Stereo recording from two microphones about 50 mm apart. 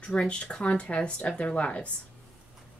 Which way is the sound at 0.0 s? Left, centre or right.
Left.